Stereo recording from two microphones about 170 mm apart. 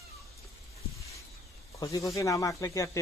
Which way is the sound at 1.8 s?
20° left (ahead or behind).